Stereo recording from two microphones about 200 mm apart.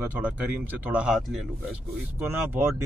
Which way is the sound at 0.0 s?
10° right (ahead or behind).